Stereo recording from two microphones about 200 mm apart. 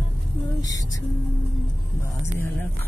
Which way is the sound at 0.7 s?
15° left (ahead or behind).